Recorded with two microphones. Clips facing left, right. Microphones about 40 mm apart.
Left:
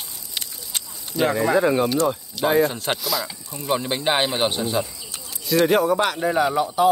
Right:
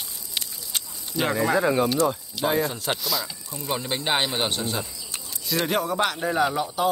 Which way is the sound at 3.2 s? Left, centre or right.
Left.